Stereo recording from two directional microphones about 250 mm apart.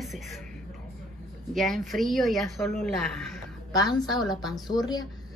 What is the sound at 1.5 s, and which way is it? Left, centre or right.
Speech, centre.